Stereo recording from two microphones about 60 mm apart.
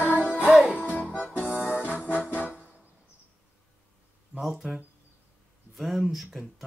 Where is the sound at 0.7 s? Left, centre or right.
Left.